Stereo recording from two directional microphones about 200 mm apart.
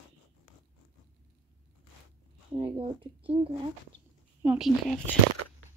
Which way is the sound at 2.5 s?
25° right (ahead or behind).